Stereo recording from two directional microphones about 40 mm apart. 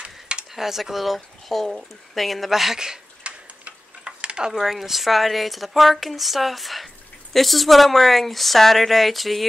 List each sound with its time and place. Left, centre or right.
0.0 s a sound: right
0.5 s speech: centre
3.3 s tick-tock: right
4.5 s speech: centre